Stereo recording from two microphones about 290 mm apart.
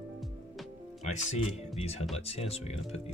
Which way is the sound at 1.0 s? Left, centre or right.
Left.